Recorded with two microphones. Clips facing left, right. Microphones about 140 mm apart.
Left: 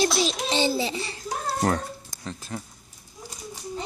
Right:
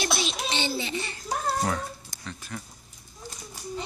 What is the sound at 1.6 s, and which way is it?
Speech, 55° left (ahead or behind).